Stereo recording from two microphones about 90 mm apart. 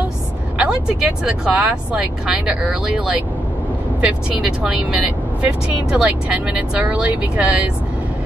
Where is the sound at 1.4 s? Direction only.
15° right (ahead or behind).